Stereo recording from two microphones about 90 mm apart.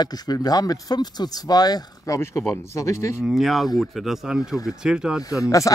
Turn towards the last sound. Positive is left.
turn(degrees=40)  # may be behind; listen again after turning